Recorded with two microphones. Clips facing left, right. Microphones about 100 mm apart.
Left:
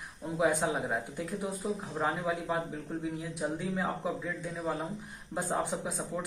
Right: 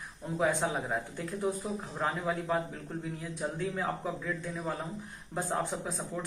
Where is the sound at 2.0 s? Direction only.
5° left (ahead or behind).